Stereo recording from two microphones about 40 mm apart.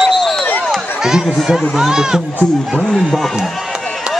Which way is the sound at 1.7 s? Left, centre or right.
Centre.